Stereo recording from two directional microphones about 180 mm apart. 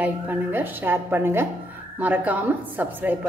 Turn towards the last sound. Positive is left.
turn(degrees=-10)  # may be behind; listen again after turning